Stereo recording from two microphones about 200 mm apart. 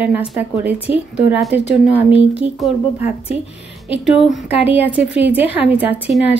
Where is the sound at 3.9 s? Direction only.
10° right (ahead or behind).